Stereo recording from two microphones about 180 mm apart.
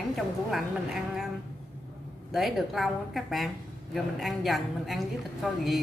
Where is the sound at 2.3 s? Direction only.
Centre (ahead or behind).